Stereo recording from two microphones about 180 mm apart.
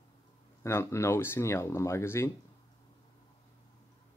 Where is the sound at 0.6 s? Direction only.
15° left (ahead or behind).